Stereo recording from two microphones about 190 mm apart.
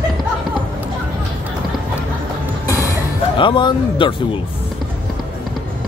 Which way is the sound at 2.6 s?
15° left (ahead or behind).